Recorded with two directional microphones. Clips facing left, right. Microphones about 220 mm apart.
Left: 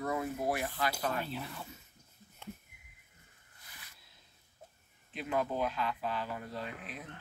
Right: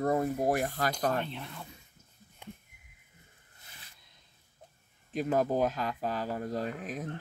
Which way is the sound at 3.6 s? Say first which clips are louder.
Right 1 dB; 25° right (ahead or behind).